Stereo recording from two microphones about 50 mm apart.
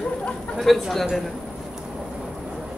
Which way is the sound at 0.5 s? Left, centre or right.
Centre.